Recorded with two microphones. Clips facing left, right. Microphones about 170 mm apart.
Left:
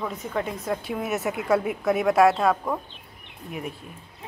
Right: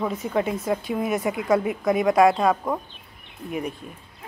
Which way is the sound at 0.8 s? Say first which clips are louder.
Right 3 dB; 5° left (ahead or behind).